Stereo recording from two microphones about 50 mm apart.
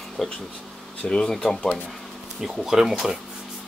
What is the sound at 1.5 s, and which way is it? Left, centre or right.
Speech, left.